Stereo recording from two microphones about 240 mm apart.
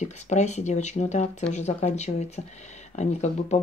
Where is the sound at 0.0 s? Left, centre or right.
Left.